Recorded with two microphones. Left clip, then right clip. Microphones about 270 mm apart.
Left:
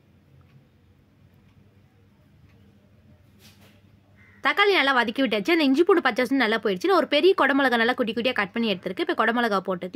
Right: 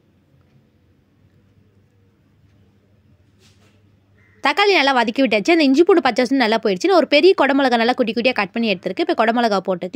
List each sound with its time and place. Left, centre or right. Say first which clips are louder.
4.4 s speech: right 5 dB; centre